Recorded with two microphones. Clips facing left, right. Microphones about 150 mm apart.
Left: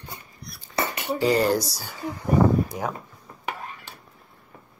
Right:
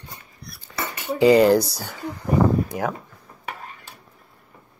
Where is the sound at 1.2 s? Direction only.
90° right.